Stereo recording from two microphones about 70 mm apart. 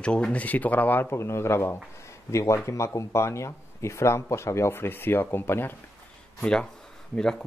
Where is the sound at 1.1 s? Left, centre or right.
Left.